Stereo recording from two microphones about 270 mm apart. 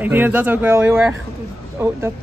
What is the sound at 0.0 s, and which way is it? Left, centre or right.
Speech, centre.